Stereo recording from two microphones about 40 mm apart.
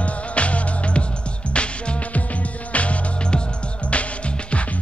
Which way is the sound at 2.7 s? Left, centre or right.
Left.